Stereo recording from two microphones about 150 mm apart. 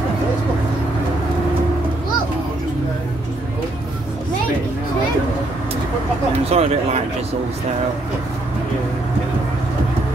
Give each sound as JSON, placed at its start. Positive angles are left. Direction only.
{"t": 6.5, "sound": "speech", "side_deg": -45}